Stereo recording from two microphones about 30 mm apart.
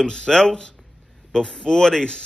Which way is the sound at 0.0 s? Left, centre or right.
Left.